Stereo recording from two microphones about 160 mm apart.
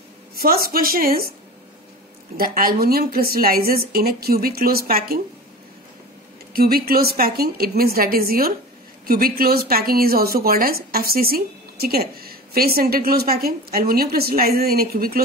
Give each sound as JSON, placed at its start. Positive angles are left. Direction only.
{"t": 0.4, "sound": "a woman's voice", "side_deg": -70}
{"t": 2.3, "sound": "a woman's voice", "side_deg": -65}
{"t": 6.5, "sound": "a woman's voice", "side_deg": -70}